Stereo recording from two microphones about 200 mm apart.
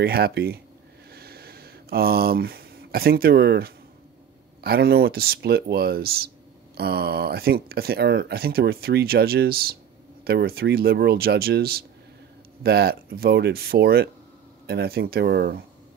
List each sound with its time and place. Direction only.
0.0 s speech: 50° right (ahead or behind)
1.1 s a sound: 50° right (ahead or behind)
4.6 s speech: 50° right (ahead or behind)